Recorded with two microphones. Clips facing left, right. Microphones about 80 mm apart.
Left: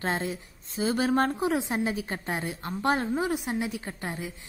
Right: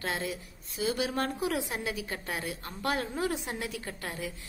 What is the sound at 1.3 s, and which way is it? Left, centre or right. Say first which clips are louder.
A woman's voice: left 5 dB; left.